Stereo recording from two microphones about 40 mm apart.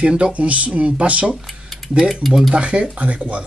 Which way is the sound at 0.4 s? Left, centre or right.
Right.